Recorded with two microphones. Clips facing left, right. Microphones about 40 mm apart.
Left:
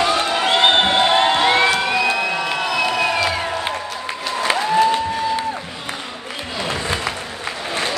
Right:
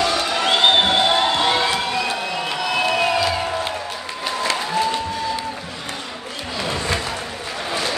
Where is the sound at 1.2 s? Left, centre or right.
Left.